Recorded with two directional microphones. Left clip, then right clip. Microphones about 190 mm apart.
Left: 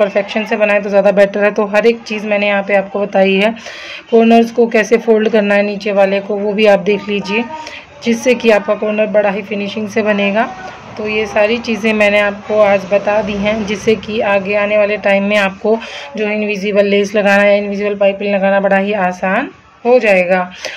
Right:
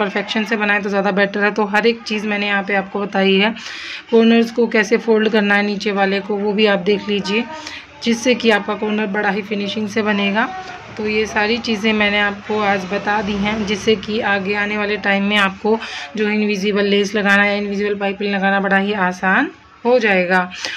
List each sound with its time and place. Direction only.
0.0 s a woman's voice: 20° right (ahead or behind)
16.2 s a woman's voice: 25° right (ahead or behind)